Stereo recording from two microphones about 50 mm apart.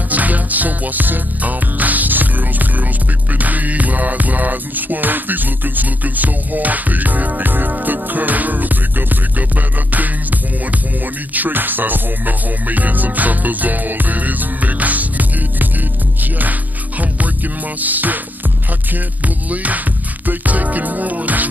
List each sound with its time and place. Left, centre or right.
0.1 s music: right
17.7 s music: right
19.2 s music: right